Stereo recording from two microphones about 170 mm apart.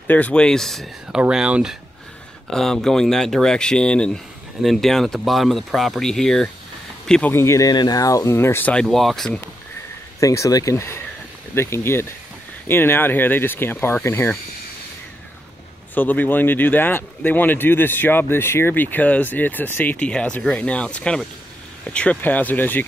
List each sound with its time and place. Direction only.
0.0 s speech: 10° left (ahead or behind)
10.2 s speech: 20° left (ahead or behind)
15.9 s speech: 10° left (ahead or behind)